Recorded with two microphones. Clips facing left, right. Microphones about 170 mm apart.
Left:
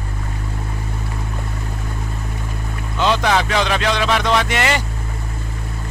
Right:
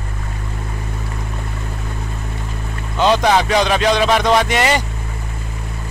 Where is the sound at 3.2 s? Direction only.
20° right (ahead or behind).